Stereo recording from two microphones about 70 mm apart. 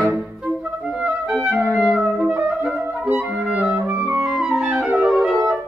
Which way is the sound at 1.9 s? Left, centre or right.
Centre.